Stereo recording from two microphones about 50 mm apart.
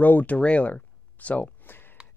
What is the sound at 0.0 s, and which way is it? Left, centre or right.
Speech, left.